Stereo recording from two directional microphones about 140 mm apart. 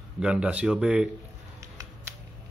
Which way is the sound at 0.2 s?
5° right (ahead or behind).